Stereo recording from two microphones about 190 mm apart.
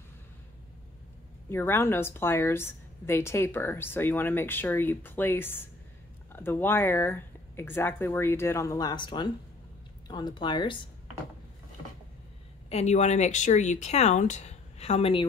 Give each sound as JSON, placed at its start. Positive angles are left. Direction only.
{"t": 1.5, "sound": "a woman's voice", "side_deg": 10}
{"t": 12.6, "sound": "speech", "side_deg": 35}